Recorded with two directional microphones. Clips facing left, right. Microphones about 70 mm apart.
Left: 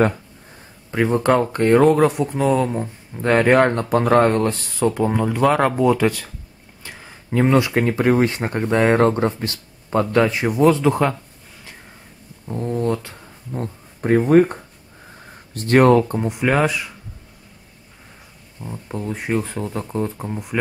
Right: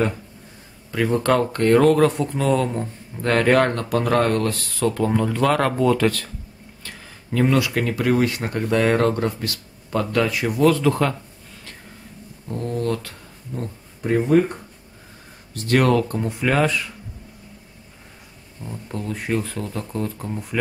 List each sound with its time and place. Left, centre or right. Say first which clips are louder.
0.9 s speech: left 2 dB; left
12.4 s speech: left 3 dB; centre
13.5 s speech: left 3 dB; left; by 16.9 s centre
18.6 s speech: left 2 dB; centre